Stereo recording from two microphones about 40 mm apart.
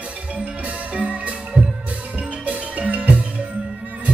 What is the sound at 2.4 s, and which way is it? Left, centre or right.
Music, right.